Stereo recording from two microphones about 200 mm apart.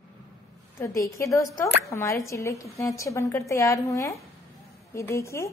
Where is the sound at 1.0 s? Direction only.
15° left (ahead or behind).